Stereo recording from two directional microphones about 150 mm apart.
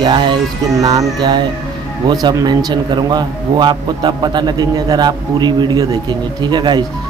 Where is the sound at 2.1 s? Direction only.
25° right (ahead or behind).